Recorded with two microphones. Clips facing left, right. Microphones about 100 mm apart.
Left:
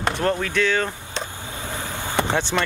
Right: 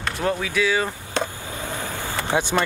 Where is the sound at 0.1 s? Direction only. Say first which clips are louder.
Left 1 dB; 5° right (ahead or behind).